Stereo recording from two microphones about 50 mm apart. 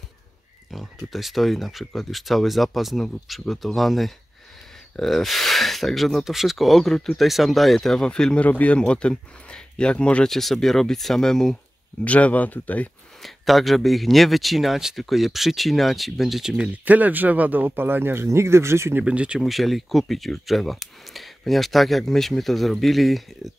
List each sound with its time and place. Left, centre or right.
0.7 s speech: centre
8.5 s speech: left
8.7 s speech: left
10.2 s speech: centre
12.0 s speech: left
13.2 s speech: centre
16.8 s speech: right
19.0 s speech: right
19.4 s speech: centre